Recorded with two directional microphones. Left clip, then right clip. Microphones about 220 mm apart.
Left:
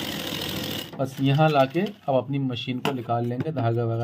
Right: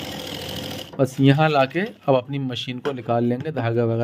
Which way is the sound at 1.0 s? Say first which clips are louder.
Right 5 dB; 50° right (ahead or behind).